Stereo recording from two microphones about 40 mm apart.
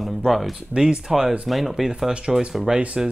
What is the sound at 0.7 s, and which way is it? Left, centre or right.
Speech, right.